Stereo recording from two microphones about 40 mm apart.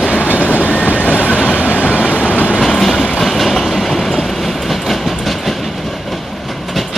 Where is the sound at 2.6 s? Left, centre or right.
Centre.